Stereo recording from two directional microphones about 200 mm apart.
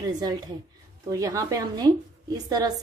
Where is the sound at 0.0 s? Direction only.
20° right (ahead or behind).